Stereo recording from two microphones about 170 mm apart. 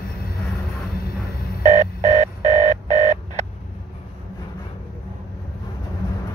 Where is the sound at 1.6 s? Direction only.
40° right (ahead or behind).